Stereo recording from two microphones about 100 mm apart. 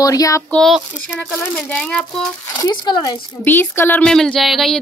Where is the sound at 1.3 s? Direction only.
15° left (ahead or behind).